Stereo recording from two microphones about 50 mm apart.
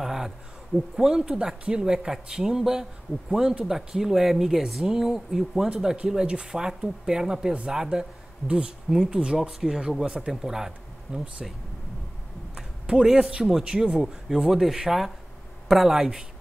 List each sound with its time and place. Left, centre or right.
0.0 s a sound: centre
0.9 s speech: centre
6.2 s speech: centre
10.3 s speech: centre
12.8 s speech: centre